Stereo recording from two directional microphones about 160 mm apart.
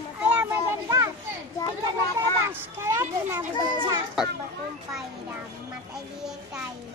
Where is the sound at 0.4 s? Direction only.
20° right (ahead or behind).